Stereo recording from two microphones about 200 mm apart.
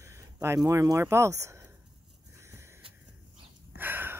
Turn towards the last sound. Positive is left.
turn(degrees=-10)  # may be behind; listen again after turning